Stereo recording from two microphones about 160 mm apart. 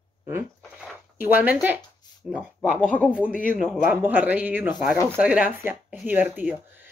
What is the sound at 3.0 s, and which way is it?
Speech, 5° right (ahead or behind).